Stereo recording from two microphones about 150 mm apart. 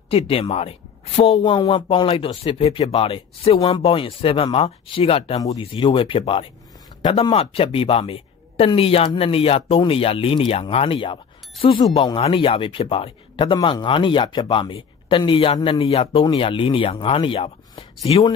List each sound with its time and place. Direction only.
0.1 s speech: 40° left (ahead or behind)